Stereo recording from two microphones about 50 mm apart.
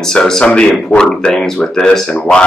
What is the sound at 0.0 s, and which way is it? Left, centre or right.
Speech, centre.